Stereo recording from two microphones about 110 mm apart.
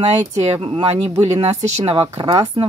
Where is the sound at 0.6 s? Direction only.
50° right (ahead or behind).